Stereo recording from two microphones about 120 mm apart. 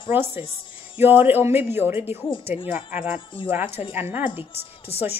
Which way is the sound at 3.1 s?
45° left (ahead or behind).